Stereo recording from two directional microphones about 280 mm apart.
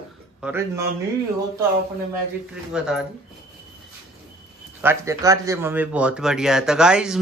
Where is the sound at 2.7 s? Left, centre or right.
Centre.